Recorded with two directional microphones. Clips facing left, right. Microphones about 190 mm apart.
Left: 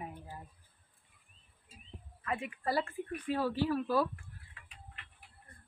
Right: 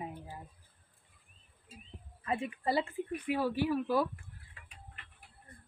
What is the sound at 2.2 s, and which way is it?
Speech, 30° right (ahead or behind).